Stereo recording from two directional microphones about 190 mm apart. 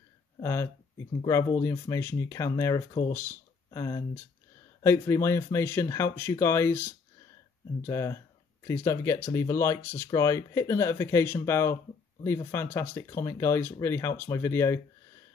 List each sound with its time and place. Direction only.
0.4 s speech: 15° left (ahead or behind)